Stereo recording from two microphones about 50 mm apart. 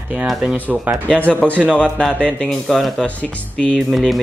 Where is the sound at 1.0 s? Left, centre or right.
Left.